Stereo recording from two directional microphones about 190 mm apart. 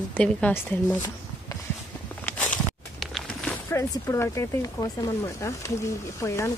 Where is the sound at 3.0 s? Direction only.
Centre (ahead or behind).